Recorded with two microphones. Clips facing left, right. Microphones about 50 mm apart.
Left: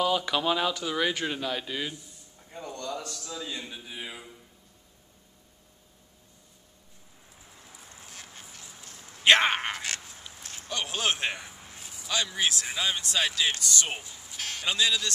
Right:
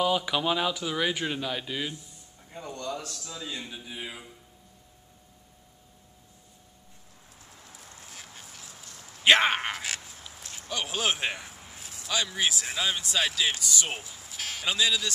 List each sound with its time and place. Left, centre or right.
0.0 s speech: centre
2.5 s a sound: centre
3.0 s speech: centre
8.1 s duck: centre
9.2 s a sound: centre
10.7 s a man's voice: centre